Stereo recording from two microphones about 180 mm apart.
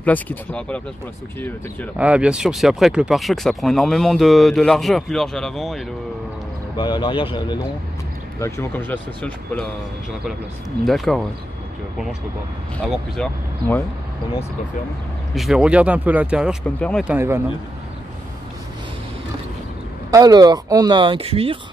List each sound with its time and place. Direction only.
0.0 s speech: 10° left (ahead or behind)
2.0 s speech: 5° right (ahead or behind)
6.8 s speech: 25° left (ahead or behind)
8.4 s speech: 15° left (ahead or behind)
10.9 s speech: centre (ahead or behind)
12.8 s speech: centre (ahead or behind)
15.3 s speech: centre (ahead or behind)
20.1 s speech: 20° right (ahead or behind)